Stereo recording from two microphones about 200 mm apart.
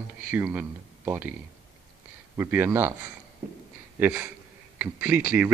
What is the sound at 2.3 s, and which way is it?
Speech, 10° right (ahead or behind).